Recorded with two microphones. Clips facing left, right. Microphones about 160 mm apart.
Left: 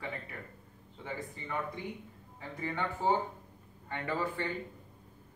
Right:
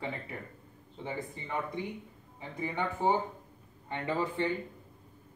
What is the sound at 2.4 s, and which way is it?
Speech, 15° right (ahead or behind).